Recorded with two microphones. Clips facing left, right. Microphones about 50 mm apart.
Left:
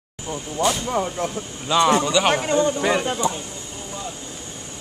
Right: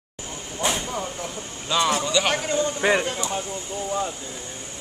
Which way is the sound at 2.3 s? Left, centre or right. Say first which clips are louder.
Left 4 dB; left.